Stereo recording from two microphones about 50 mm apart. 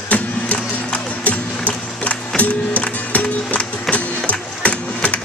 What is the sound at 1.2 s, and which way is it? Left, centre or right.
Music, left.